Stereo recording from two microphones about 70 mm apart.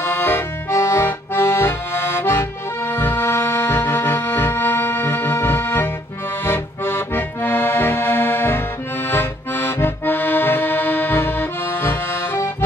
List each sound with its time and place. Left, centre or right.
0.0 s accordion: left